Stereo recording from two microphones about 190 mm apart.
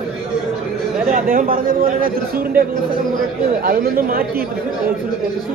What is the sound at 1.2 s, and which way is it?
A man's voice, 50° right (ahead or behind).